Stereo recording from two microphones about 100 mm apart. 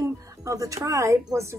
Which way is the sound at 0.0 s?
30° right (ahead or behind).